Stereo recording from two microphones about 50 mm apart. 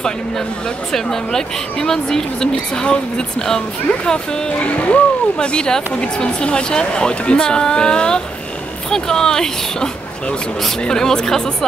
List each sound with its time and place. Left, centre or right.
0.9 s a woman's voice: centre